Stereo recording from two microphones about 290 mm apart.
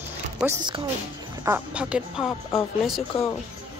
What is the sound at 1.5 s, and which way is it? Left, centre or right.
Speech, centre.